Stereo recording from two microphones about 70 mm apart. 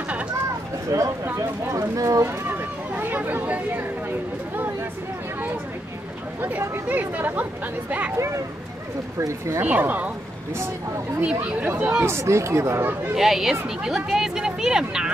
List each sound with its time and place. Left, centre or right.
0.9 s speech: right
2.2 s speech: right
6.7 s speech: right
9.6 s speech: right
11.1 s speech: centre
12.0 s speech: right
13.1 s speech: centre